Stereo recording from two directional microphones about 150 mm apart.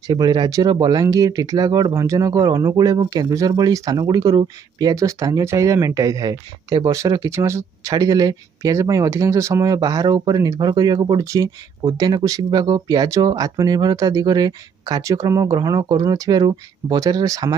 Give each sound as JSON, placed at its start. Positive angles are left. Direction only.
{"t": 0.0, "sound": "speech", "side_deg": -30}